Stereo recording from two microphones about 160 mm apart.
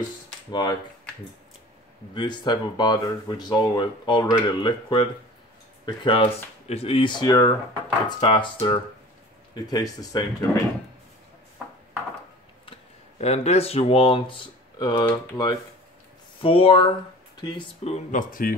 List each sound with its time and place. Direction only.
0.5 s speech: 25° left (ahead or behind)
2.1 s speech: 25° left (ahead or behind)
13.2 s speech: 40° left (ahead or behind); by 15.5 s 25° left (ahead or behind)
16.4 s speech: 35° left (ahead or behind)
17.9 s speech: 55° left (ahead or behind)